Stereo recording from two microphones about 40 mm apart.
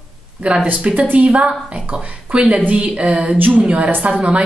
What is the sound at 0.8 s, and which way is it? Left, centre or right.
A woman's voice, right.